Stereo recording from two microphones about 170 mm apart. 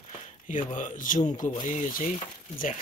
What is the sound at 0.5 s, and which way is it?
Speech, 45° left (ahead or behind).